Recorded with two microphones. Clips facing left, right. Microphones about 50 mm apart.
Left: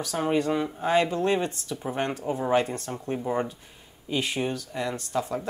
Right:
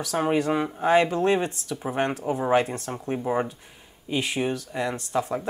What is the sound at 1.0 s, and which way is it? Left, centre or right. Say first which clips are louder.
Speech: right 2 dB; right.